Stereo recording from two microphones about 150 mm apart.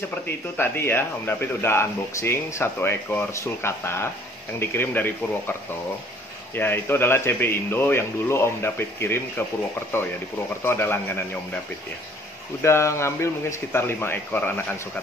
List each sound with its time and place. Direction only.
0.6 s speech: 15° left (ahead or behind)
10.6 s speech: 15° left (ahead or behind)
12.6 s speech: 20° left (ahead or behind)